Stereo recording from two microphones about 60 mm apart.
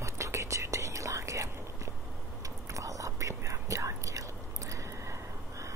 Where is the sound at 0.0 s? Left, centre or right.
Right.